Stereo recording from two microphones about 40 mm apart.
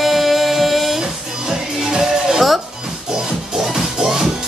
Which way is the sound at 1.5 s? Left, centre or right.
Centre.